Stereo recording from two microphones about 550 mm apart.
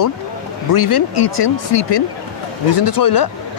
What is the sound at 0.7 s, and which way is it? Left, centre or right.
Speech, left.